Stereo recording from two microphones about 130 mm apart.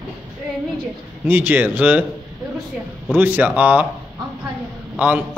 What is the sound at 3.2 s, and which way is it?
Speech, 15° right (ahead or behind).